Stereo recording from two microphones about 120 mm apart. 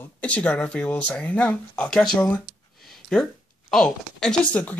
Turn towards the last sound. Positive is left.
turn(degrees=10)  # may be behind; listen again after turning